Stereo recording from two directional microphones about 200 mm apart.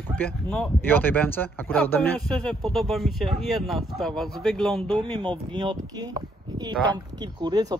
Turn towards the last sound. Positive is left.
turn(degrees=-20)  # may be behind; listen again after turning